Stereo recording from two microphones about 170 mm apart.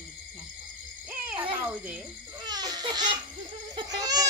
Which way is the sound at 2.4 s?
25° right (ahead or behind).